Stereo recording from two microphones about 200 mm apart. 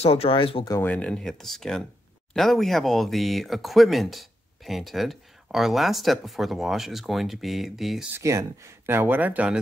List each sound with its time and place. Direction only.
0.0 s speech: 30° left (ahead or behind)
0.7 s speech: 5° left (ahead or behind)
8.2 s speech: 15° right (ahead or behind)